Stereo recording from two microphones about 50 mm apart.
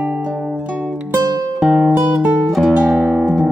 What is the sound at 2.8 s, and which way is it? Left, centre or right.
Guitar, centre.